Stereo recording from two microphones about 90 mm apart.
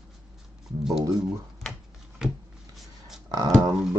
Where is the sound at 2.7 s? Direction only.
5° right (ahead or behind).